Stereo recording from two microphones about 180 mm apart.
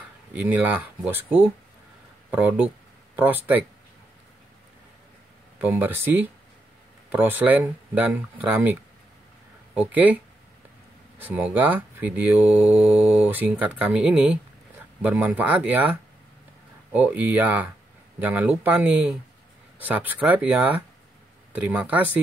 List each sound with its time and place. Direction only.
0.3 s speech: 10° right (ahead or behind)
5.6 s speech: 10° right (ahead or behind)
9.8 s speech: 10° right (ahead or behind)
11.1 s speech: 10° right (ahead or behind)